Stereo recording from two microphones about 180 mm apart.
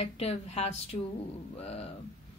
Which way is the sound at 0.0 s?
35° left (ahead or behind).